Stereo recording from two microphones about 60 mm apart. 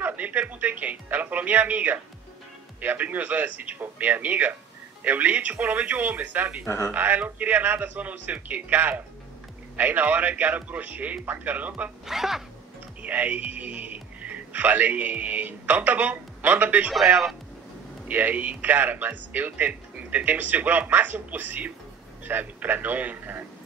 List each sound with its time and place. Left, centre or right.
0.0 s a man's voice: right
6.6 s speech: left
6.9 s a man's voice: right
12.1 s speech: centre
13.0 s a man's voice: right
18.0 s a man's voice: right